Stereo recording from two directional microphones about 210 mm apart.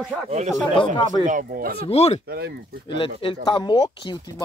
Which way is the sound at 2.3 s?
50° right (ahead or behind).